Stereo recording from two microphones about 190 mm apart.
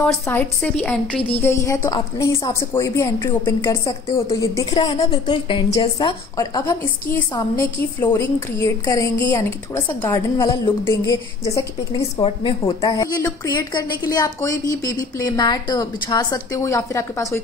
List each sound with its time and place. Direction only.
0.0 s a woman's voice: 10° left (ahead or behind)